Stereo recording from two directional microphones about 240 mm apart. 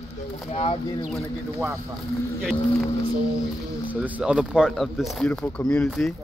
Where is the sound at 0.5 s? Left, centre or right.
Left.